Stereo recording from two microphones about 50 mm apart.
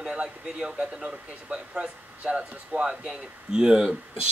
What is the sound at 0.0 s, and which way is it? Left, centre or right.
A man's voice, centre.